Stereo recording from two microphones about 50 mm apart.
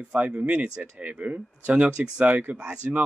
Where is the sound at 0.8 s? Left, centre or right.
Right.